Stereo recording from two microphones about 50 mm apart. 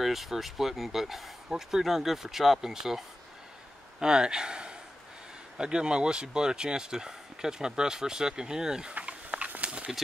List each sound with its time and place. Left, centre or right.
0.0 s speech: centre
4.0 s speech: centre
8.9 s a sound: right